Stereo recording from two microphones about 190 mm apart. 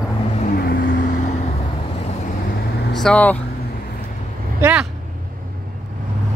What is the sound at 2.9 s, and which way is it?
Speech, 5° left (ahead or behind).